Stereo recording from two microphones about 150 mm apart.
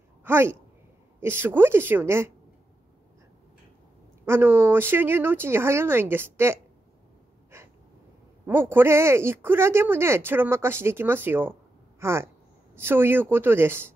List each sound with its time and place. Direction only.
0.2 s speech: 15° right (ahead or behind)
4.3 s speech: 15° right (ahead or behind)
8.5 s speech: 15° right (ahead or behind)